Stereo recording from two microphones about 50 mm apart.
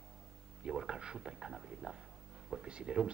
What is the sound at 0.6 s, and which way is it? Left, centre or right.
Speech, centre.